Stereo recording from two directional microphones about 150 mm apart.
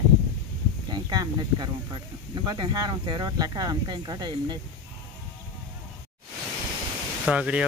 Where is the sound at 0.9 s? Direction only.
25° right (ahead or behind).